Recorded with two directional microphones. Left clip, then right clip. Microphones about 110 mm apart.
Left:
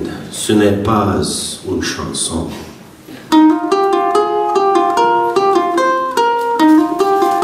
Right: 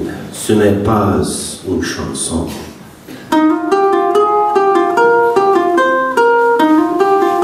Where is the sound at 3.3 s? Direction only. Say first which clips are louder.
Left 1 dB; 25° left (ahead or behind).